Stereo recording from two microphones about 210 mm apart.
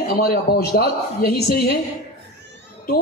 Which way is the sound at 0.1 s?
50° left (ahead or behind).